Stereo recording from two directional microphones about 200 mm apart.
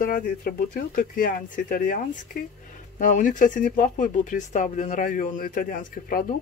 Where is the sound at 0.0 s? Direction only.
45° left (ahead or behind).